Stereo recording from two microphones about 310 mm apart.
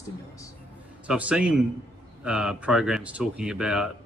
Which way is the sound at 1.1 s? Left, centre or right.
Centre.